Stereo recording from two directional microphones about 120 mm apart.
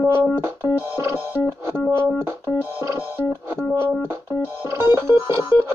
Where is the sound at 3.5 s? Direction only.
20° right (ahead or behind).